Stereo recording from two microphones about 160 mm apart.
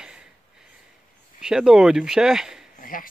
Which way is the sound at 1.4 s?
5° right (ahead or behind).